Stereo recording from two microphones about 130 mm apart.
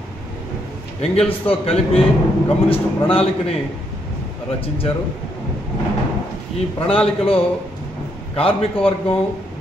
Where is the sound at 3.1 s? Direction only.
45° left (ahead or behind).